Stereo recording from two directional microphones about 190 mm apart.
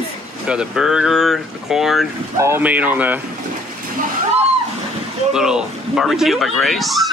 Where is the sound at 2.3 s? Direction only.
15° right (ahead or behind).